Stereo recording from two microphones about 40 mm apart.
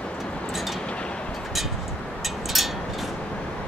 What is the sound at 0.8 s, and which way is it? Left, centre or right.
Vehicle, left.